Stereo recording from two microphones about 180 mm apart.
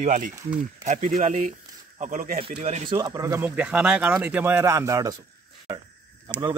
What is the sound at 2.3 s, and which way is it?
Speech, 35° right (ahead or behind).